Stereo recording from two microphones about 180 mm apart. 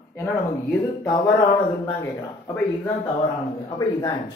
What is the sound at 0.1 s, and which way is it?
Speech, 10° left (ahead or behind).